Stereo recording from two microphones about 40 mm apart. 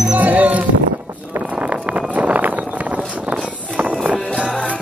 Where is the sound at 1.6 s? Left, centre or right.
Right.